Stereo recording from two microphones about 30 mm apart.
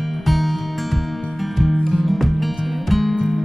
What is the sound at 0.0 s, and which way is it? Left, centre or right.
Music, centre.